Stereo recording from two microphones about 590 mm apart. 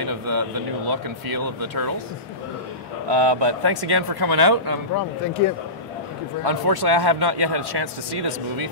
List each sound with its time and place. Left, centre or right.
0.0 s speech: right
3.1 s speech: right
6.4 s speech: right